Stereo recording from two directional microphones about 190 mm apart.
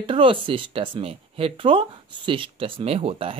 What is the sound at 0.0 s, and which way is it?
Speech, 25° right (ahead or behind).